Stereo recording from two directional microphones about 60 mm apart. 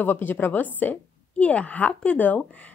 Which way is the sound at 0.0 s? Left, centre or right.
Left.